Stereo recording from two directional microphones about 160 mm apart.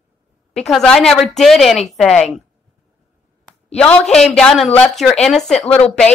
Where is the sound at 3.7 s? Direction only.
5° left (ahead or behind).